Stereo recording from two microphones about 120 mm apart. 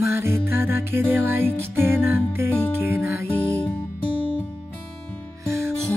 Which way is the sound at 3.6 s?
45° left (ahead or behind).